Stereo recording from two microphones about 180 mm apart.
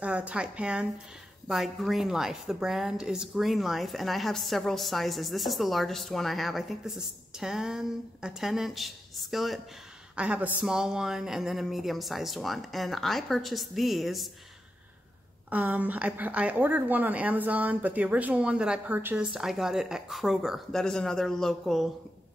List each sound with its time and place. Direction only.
0.0 s a woman's voice: 5° right (ahead or behind)
15.5 s a woman's voice: 10° right (ahead or behind)